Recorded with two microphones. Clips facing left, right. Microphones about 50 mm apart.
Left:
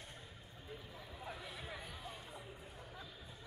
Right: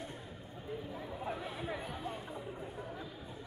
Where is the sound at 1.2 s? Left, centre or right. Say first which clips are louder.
Right 8 dB; right.